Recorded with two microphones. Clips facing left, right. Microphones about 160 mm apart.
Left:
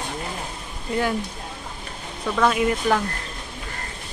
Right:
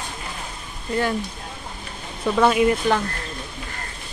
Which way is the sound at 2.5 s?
Centre (ahead or behind).